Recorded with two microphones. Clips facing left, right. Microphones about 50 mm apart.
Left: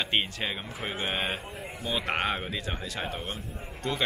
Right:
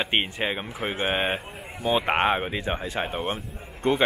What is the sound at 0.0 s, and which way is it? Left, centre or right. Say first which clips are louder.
A man's voice: right 4 dB; right.